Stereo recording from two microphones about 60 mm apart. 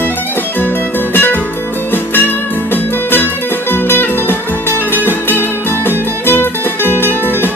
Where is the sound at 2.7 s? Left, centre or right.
Left.